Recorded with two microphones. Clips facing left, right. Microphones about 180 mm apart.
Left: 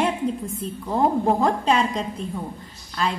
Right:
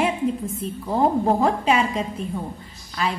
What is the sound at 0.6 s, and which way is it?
A woman's voice, centre (ahead or behind).